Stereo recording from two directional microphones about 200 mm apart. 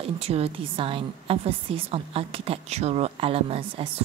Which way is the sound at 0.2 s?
30° right (ahead or behind).